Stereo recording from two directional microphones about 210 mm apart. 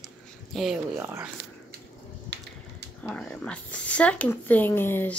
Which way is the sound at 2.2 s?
55° right (ahead or behind).